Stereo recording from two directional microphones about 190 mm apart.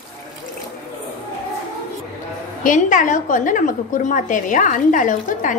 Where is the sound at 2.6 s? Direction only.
45° left (ahead or behind).